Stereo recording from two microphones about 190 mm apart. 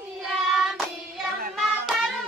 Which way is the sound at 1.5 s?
Centre (ahead or behind).